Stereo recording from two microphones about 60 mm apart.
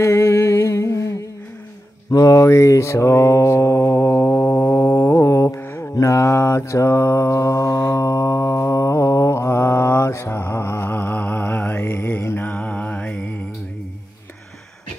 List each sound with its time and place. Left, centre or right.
0.0 s a sound: left
2.1 s speech: left
2.4 s mantra: left
5.6 s mantra: left
5.9 s mantra: left
11.8 s mantra: left